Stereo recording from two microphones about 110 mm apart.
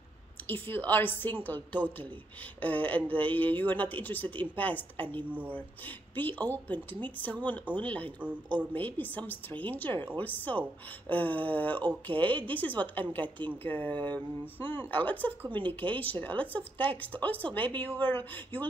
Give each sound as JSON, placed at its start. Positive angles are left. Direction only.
{"t": 0.5, "sound": "speech", "side_deg": 15}